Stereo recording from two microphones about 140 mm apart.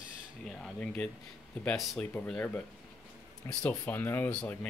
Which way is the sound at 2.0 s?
15° left (ahead or behind).